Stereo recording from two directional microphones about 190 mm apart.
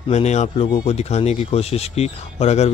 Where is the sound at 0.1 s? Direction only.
35° left (ahead or behind).